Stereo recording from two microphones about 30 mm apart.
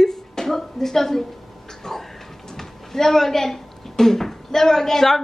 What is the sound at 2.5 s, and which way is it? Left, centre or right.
Speech, centre.